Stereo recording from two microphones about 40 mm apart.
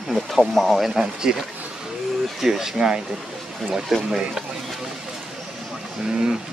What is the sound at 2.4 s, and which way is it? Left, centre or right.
Speech, centre.